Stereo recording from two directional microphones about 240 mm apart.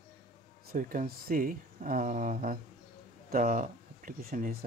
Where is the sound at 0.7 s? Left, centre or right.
Right.